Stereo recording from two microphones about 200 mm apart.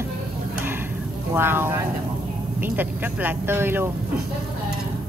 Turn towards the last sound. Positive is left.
turn(degrees=-10)  # may be behind; listen again after turning